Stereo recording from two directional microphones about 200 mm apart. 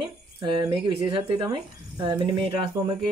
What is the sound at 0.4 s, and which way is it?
Speech, 25° right (ahead or behind).